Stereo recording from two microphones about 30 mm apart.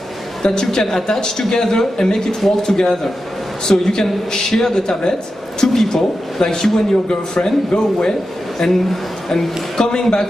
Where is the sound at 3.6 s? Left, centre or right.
Centre.